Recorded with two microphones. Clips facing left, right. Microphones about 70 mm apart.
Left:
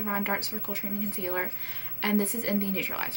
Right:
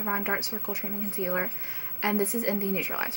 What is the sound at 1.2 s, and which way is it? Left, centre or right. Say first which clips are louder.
Speech: right 6 dB; left.